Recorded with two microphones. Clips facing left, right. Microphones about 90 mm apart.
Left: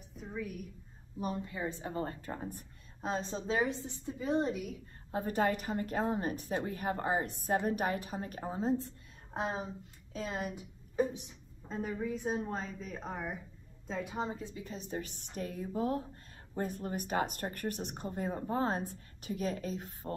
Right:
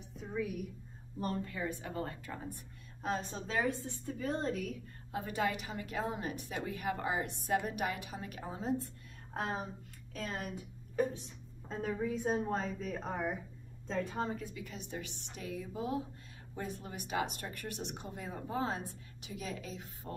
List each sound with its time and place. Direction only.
0.1 s a sound: centre (ahead or behind)
1.2 s a woman's voice: 15° left (ahead or behind)
5.1 s a woman's voice: 40° left (ahead or behind)
9.3 s a woman's voice: 20° left (ahead or behind)
11.7 s a woman's voice: centre (ahead or behind)
13.8 s a woman's voice: 10° left (ahead or behind); by 20.1 s 45° left (ahead or behind)